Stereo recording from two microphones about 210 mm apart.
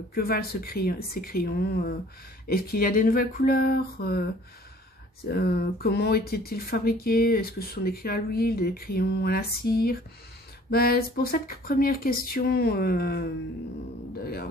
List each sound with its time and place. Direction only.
0.1 s speech: 45° left (ahead or behind)
5.3 s speech: 45° left (ahead or behind)